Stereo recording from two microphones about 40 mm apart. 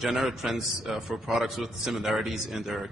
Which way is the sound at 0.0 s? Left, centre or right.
Centre.